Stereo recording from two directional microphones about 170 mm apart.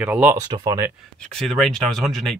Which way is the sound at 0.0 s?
10° right (ahead or behind).